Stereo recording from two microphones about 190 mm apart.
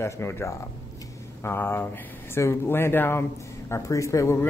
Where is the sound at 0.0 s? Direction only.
15° left (ahead or behind).